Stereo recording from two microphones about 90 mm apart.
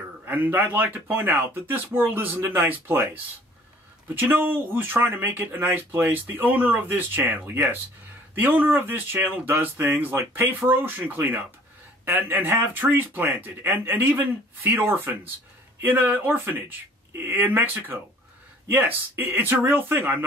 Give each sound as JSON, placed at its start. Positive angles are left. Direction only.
{"t": 0.2, "sound": "a man's voice", "side_deg": -20}